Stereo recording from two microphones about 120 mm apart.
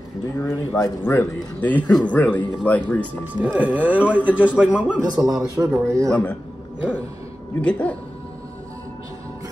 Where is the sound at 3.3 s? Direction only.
15° right (ahead or behind).